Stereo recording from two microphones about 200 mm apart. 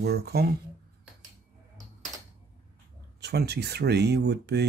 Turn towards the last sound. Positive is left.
turn(degrees=-55)  # may be behind; listen again after turning